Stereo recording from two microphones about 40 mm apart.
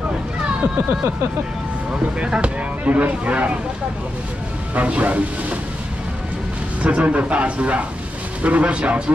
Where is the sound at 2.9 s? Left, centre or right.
Right.